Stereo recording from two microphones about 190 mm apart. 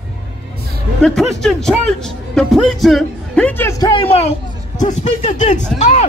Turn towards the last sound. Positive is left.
turn(degrees=40)  # may be behind; listen again after turning